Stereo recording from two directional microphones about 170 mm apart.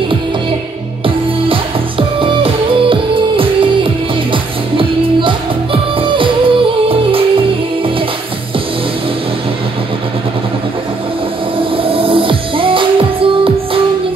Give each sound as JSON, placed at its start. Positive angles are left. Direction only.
{"t": 1.0, "sound": "music", "side_deg": -30}
{"t": 11.7, "sound": "music", "side_deg": -30}